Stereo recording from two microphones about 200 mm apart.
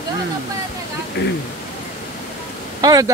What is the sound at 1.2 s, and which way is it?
Speech, 55° left (ahead or behind).